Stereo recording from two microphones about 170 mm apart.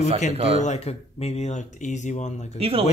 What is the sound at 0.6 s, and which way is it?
Speech, 40° left (ahead or behind).